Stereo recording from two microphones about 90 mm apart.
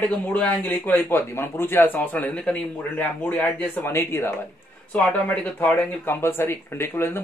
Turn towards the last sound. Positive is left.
turn(degrees=25)  # may be behind; listen again after turning